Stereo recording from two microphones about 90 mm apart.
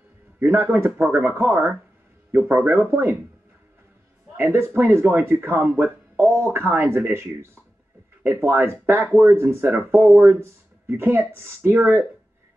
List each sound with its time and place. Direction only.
0.4 s speech: 25° right (ahead or behind)
4.4 s speech: 25° right (ahead or behind)